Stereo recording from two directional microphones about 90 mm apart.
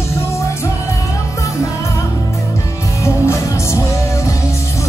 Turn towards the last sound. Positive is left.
turn(degrees=35)  # may be behind; listen again after turning